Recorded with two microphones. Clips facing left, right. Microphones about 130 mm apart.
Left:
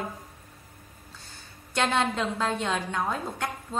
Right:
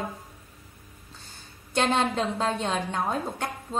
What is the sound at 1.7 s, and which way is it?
A woman's voice, 20° right (ahead or behind).